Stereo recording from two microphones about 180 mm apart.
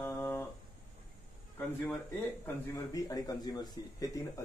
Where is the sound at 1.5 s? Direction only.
10° left (ahead or behind).